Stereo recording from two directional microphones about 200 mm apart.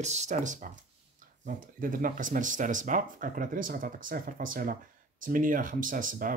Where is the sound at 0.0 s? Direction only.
35° right (ahead or behind).